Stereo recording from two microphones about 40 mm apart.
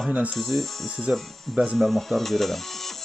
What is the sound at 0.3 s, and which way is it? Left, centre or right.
Speech, centre.